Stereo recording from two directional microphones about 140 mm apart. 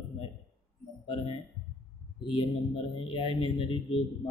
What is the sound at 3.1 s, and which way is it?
Speech, 40° left (ahead or behind).